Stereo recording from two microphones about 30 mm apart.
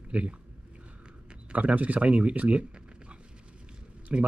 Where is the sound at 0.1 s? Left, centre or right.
Right.